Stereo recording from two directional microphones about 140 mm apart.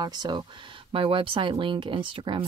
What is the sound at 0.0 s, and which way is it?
Speech, 30° right (ahead or behind).